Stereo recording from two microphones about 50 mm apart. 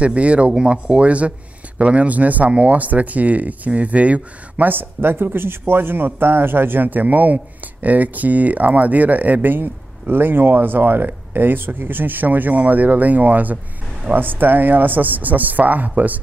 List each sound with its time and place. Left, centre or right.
0.0 s speech: right